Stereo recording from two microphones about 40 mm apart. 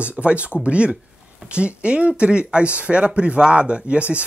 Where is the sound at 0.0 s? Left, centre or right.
Right.